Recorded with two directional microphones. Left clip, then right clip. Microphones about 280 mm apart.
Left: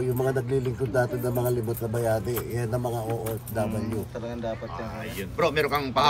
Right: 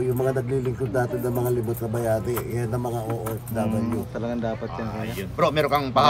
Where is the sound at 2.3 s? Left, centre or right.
Centre.